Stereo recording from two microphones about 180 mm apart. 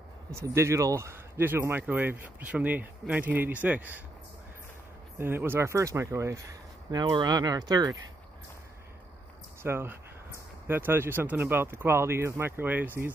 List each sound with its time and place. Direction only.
0.3 s speech: 15° right (ahead or behind)
5.2 s speech: 10° right (ahead or behind)
9.6 s speech: 15° right (ahead or behind)